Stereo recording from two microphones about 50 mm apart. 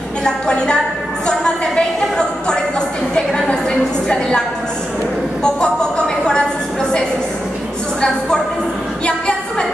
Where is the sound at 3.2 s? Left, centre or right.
Centre.